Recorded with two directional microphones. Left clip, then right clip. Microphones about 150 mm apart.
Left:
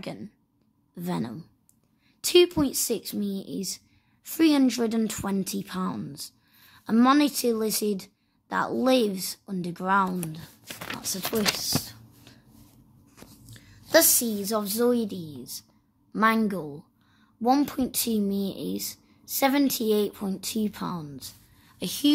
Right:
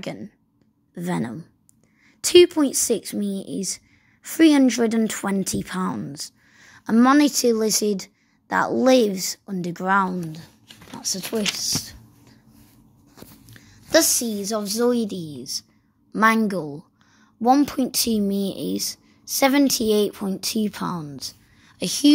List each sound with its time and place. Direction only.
0.0 s a woman's voice: 20° right (ahead or behind)
13.5 s a woman's voice: 20° right (ahead or behind)